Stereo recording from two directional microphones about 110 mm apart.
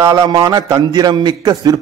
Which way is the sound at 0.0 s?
40° right (ahead or behind).